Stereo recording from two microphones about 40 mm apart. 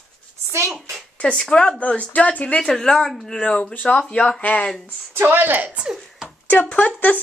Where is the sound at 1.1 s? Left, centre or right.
Left.